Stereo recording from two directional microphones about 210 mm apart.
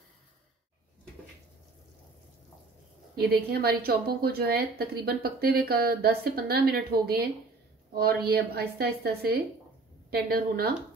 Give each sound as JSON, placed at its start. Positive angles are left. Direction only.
{"t": 3.2, "sound": "a woman's voice", "side_deg": -50}